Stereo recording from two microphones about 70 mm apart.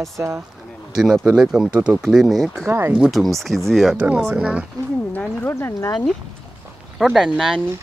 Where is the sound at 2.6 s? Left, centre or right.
Right.